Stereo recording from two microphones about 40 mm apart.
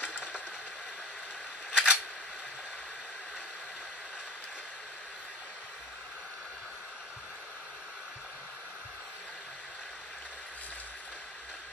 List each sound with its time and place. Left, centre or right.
1.7 s camera: right